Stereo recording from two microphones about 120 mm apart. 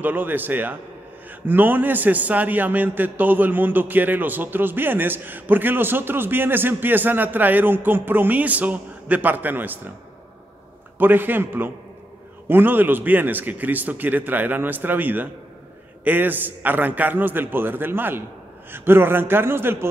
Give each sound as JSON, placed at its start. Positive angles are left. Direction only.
{"t": 0.0, "sound": "a man's voice", "side_deg": -15}
{"t": 11.0, "sound": "a man's voice", "side_deg": -15}